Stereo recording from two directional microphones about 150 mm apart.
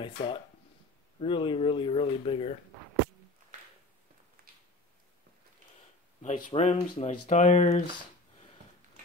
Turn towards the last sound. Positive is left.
turn(degrees=50)  # may be behind; listen again after turning